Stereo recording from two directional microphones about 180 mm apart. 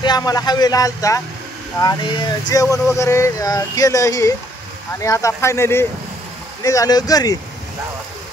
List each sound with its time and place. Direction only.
0.0 s speech: 20° left (ahead or behind)